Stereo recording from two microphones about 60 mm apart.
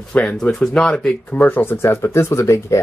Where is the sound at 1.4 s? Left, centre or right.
Left.